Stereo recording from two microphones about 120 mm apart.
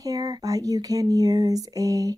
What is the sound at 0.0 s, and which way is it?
Speech, 30° right (ahead or behind).